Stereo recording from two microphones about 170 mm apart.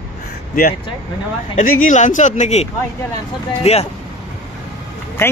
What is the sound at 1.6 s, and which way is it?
Speech, 50° left (ahead or behind).